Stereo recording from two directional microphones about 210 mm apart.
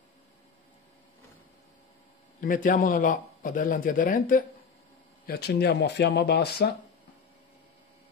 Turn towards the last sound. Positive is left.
turn(degrees=50)  # may be behind; listen again after turning